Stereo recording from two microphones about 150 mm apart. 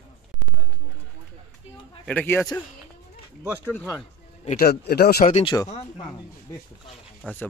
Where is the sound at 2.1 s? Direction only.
10° left (ahead or behind).